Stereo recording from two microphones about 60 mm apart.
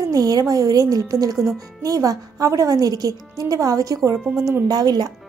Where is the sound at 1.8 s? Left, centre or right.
Right.